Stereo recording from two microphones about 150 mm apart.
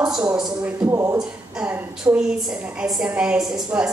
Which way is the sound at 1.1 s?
5° right (ahead or behind).